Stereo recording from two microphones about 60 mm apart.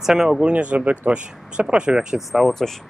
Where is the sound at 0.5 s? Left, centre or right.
Right.